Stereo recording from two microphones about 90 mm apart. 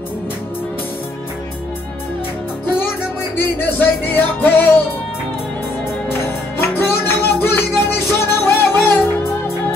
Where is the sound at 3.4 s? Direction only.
20° left (ahead or behind).